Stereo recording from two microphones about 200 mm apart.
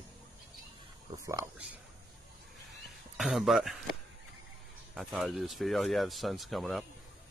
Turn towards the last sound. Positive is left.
turn(degrees=0)  # may be behind; listen again after turning